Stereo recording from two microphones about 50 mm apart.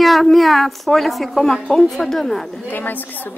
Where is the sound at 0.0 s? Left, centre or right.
Centre.